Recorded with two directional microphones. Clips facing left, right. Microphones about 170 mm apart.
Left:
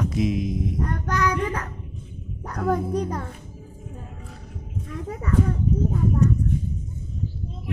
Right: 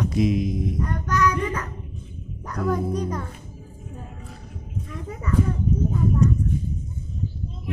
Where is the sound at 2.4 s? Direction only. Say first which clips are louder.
Even; 55° left (ahead or behind).